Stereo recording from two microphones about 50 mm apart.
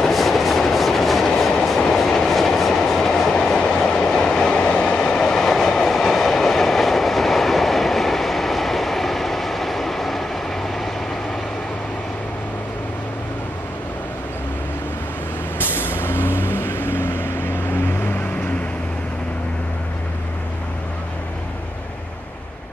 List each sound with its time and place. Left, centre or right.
0.0 s train: centre
15.6 s vehicle: left